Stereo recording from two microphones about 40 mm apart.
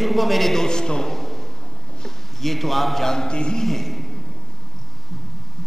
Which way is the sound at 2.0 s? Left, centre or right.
Centre.